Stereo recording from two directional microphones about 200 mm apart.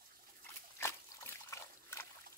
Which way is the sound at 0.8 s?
15° left (ahead or behind).